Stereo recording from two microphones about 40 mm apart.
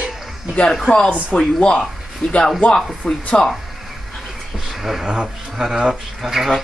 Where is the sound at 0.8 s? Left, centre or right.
Left.